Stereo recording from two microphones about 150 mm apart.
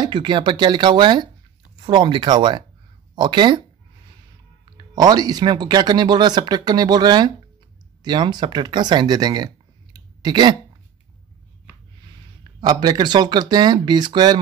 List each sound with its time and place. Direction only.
0.0 s speech: 30° right (ahead or behind)
4.6 s speech: 25° right (ahead or behind)
9.9 s clicking: 30° right (ahead or behind)
12.5 s speech: 30° right (ahead or behind)